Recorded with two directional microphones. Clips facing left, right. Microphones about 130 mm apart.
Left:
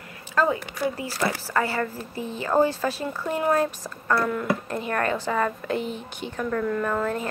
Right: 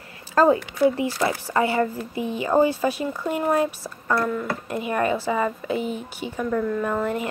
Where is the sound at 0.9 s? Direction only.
20° right (ahead or behind); by 4.5 s centre (ahead or behind).